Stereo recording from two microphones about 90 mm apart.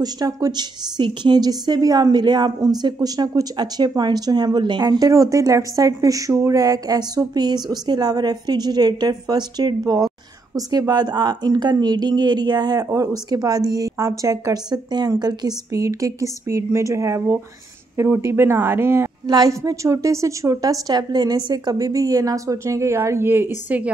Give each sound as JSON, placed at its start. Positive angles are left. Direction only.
{"t": 0.0, "sound": "a woman's voice", "side_deg": -45}
{"t": 19.2, "sound": "a woman's voice", "side_deg": -45}